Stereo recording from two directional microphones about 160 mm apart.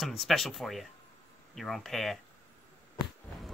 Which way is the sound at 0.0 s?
Centre (ahead or behind).